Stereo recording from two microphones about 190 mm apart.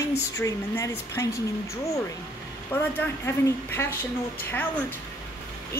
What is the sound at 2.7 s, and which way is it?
A woman's voice, 10° left (ahead or behind).